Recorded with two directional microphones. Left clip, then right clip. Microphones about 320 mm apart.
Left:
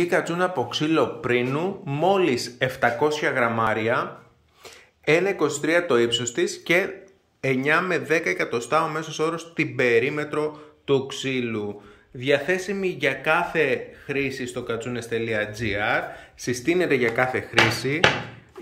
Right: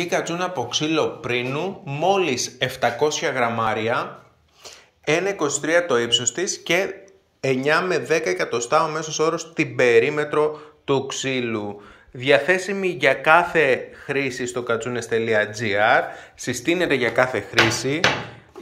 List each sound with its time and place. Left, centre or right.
0.0 s speech: centre